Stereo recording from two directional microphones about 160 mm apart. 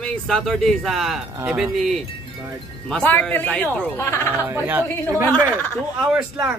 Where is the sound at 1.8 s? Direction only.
Centre (ahead or behind); by 4.4 s 15° left (ahead or behind).